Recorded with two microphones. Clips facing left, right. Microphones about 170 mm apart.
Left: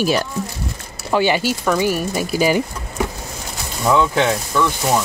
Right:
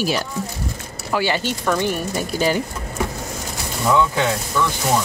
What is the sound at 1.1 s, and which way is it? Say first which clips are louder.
Speech: left 4 dB; 20° left (ahead or behind).